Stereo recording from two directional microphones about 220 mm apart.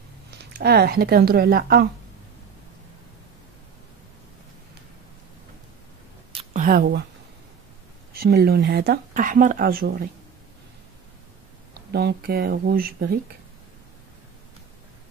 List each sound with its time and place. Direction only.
0.5 s speech: 45° right (ahead or behind)
6.3 s a sound: 35° right (ahead or behind)
8.1 s speech: 45° right (ahead or behind)
11.9 s speech: 45° right (ahead or behind)